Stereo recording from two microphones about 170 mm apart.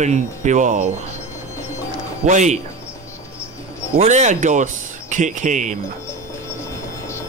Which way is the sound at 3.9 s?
45° right (ahead or behind).